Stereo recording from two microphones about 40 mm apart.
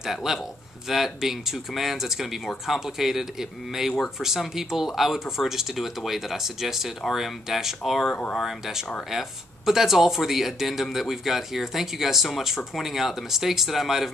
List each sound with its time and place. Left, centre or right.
0.0 s speech: centre